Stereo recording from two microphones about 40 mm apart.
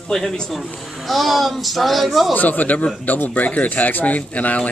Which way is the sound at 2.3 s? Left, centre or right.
Left.